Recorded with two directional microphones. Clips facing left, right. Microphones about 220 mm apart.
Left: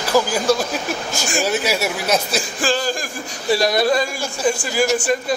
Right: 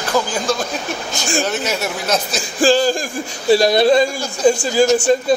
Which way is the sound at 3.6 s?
25° right (ahead or behind).